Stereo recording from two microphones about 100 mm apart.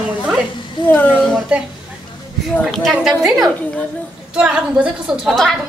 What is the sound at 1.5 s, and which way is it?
Speech, 10° right (ahead or behind).